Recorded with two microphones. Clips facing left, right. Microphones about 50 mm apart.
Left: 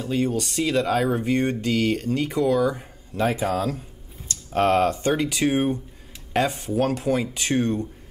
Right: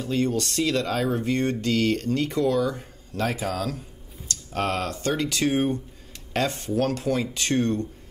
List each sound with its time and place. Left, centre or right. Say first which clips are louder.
0.0 s speech: left 1 dB; centre
3.4 s speech: left 4 dB; left; by 7.9 s centre